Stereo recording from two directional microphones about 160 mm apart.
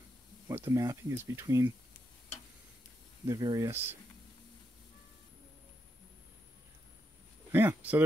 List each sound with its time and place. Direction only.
0.5 s speech: 20° right (ahead or behind)
3.3 s speech: 20° right (ahead or behind)
7.5 s speech: 10° right (ahead or behind)